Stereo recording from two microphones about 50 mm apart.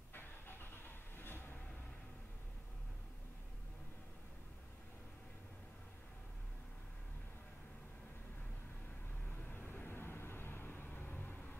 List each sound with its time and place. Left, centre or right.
0.1 s vehicle: left
9.4 s vehicle: left